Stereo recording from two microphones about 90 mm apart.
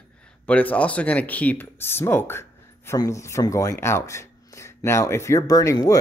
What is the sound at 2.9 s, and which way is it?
Speech, 40° left (ahead or behind).